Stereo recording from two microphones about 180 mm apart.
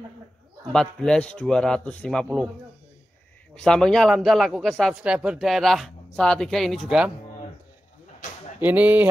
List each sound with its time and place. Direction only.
0.7 s speech: 5° left (ahead or behind)
3.5 s speech: 5° left (ahead or behind)
8.5 s speech: 10° right (ahead or behind)